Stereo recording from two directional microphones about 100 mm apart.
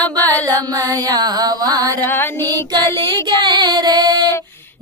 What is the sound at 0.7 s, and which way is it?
Mantra, 35° right (ahead or behind).